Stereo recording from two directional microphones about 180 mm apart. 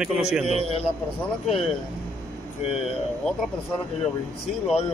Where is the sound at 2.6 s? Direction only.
35° left (ahead or behind).